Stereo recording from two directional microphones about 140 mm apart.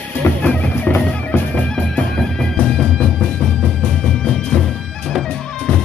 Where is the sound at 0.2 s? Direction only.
10° left (ahead or behind).